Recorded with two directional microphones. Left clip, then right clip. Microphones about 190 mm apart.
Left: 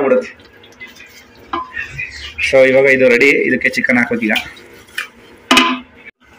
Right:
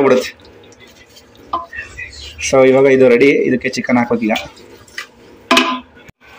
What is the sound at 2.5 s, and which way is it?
Speech, 10° right (ahead or behind).